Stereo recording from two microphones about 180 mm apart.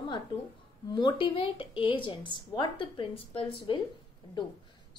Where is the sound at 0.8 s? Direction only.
25° left (ahead or behind).